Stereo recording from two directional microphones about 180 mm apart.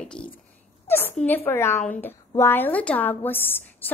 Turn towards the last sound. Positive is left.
turn(degrees=10)  # may be behind; listen again after turning